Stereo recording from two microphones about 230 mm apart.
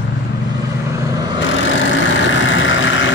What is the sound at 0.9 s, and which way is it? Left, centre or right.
Vehicle, centre.